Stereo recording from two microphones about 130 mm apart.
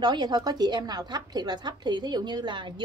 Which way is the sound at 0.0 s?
30° right (ahead or behind).